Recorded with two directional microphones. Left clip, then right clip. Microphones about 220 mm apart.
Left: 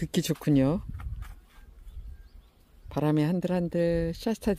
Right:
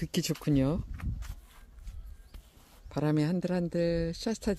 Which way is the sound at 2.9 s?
15° left (ahead or behind).